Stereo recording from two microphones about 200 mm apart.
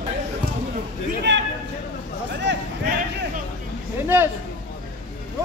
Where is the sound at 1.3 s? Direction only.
60° right (ahead or behind).